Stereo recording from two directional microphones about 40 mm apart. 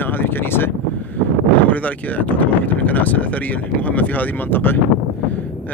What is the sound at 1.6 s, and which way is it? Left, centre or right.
Speech, left.